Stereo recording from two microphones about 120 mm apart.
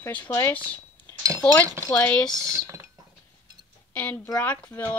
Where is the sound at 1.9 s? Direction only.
10° left (ahead or behind).